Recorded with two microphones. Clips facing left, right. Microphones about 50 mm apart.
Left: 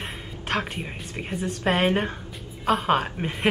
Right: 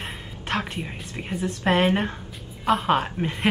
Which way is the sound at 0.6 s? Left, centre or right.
Centre.